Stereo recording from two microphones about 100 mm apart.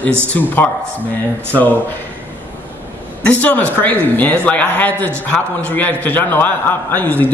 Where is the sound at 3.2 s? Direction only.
15° left (ahead or behind).